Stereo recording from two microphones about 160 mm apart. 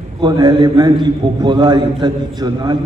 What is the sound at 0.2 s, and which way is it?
A man's voice, 30° right (ahead or behind).